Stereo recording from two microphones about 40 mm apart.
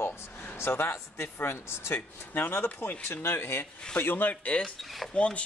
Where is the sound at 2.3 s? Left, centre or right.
Left.